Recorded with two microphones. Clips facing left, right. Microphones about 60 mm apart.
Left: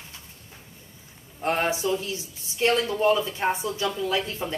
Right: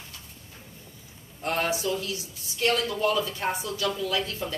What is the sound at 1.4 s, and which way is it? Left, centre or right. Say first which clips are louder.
A woman's voice: left 3 dB; left.